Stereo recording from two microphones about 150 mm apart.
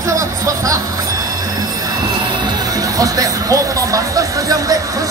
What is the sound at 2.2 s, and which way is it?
Music, 25° right (ahead or behind).